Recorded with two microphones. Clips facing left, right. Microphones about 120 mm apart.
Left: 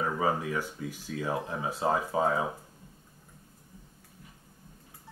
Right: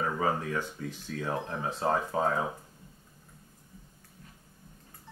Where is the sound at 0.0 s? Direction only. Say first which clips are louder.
Left 1 dB; 5° left (ahead or behind).